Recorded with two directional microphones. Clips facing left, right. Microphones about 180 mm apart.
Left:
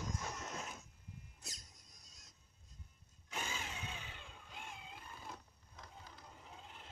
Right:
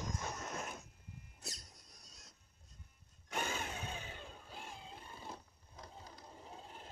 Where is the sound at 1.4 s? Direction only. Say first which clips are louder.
Right 5 dB; 70° right (ahead or behind).